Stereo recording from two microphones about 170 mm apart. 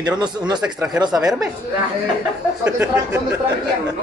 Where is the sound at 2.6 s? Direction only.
10° right (ahead or behind).